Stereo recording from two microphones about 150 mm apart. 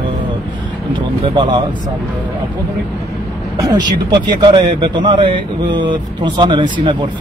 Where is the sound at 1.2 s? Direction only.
30° right (ahead or behind).